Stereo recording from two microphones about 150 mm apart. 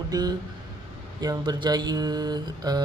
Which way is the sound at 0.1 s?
25° right (ahead or behind).